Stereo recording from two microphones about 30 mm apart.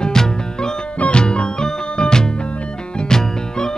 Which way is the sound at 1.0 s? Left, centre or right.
Left.